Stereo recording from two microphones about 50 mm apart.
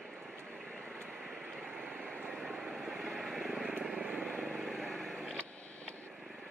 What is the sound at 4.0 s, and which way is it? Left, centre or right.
Vehicle, right.